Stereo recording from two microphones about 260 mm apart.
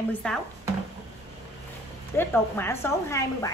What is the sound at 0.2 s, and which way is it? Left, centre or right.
Speech, centre.